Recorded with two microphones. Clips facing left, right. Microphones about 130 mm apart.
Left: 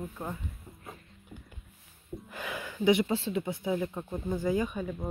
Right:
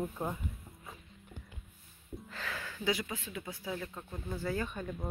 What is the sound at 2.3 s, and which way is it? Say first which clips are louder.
Speech: left 4 dB; 15° left (ahead or behind).